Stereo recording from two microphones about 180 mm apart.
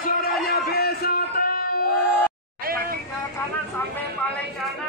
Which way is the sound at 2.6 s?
55° right (ahead or behind).